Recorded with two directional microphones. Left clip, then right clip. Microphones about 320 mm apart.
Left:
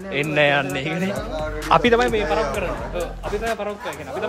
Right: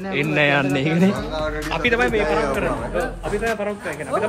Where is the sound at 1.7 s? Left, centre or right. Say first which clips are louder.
Left 4 dB; left.